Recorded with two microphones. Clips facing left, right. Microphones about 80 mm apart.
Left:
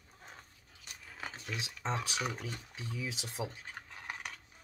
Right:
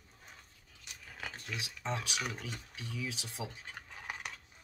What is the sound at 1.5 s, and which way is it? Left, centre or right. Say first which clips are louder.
Speech: left 2 dB; left.